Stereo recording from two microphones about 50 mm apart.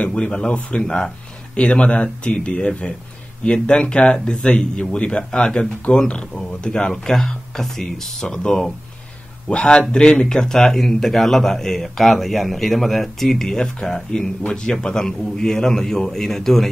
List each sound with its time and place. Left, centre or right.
0.0 s a man's voice: left